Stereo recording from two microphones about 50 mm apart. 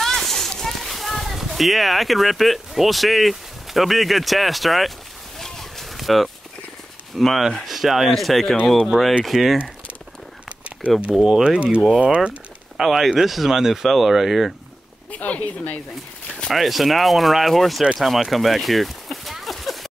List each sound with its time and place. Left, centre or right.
0.0 s a sound: centre
7.2 s speech: centre
11.1 s speech: centre
12.0 s speech: right
12.7 s speech: centre
15.0 s speech: left
16.5 s speech: centre